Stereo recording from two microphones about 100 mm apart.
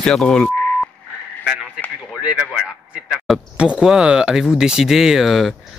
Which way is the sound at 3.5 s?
10° right (ahead or behind).